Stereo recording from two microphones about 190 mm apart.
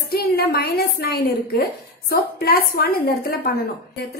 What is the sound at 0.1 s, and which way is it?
A woman's voice, 55° left (ahead or behind).